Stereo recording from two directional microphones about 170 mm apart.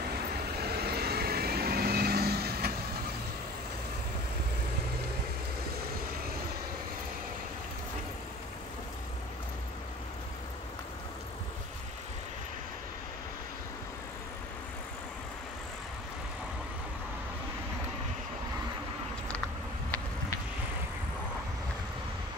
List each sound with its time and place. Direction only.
0.6 s vehicle: 70° right (ahead or behind)